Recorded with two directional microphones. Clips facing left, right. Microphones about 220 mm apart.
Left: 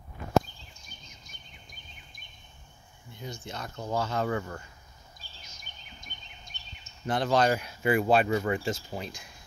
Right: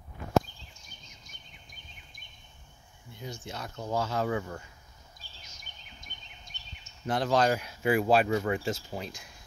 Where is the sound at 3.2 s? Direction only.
5° right (ahead or behind).